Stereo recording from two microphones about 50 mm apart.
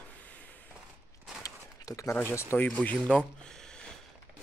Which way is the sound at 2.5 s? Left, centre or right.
Left.